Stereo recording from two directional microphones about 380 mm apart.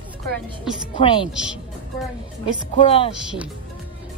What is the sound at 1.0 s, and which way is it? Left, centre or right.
Speech, centre.